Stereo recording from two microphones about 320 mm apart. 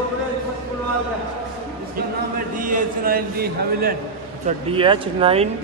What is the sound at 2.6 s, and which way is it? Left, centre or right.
A man's voice, right.